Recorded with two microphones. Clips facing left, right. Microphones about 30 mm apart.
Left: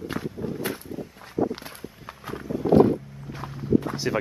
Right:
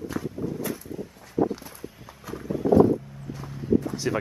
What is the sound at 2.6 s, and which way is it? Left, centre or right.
Wild animals, left.